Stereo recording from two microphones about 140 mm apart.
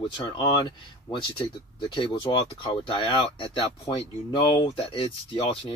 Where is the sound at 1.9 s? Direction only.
35° left (ahead or behind).